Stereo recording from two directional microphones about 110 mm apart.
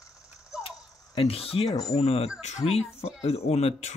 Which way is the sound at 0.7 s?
55° left (ahead or behind).